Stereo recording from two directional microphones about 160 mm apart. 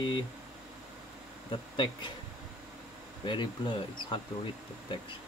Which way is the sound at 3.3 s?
30° left (ahead or behind).